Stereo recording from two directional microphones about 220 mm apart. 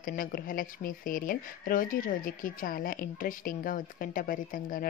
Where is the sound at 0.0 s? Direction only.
40° left (ahead or behind).